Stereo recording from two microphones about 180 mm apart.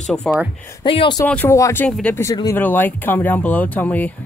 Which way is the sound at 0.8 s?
25° left (ahead or behind).